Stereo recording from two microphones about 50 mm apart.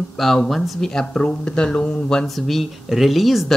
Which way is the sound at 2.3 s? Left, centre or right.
Centre.